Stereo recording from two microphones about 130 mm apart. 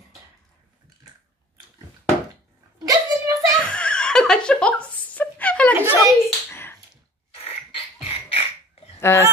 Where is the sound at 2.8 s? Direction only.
25° right (ahead or behind).